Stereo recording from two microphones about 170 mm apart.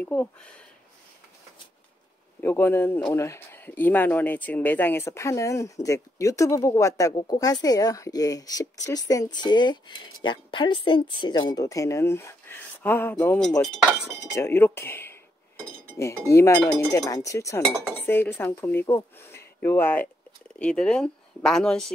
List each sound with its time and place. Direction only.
0.0 s speech: 10° left (ahead or behind)
2.4 s speech: 15° left (ahead or behind)